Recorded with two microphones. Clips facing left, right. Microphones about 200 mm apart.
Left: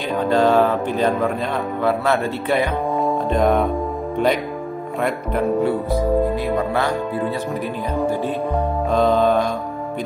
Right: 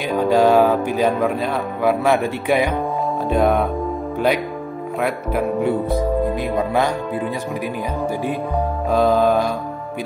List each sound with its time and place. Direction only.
0.2 s speech: 10° right (ahead or behind)
5.0 s speech: 5° right (ahead or behind)
6.4 s speech: 15° right (ahead or behind)